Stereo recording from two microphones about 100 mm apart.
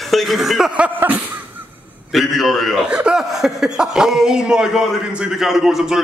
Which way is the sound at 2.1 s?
Centre (ahead or behind).